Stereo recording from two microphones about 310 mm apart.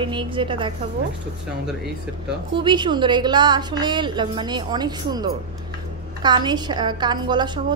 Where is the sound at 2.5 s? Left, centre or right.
Centre.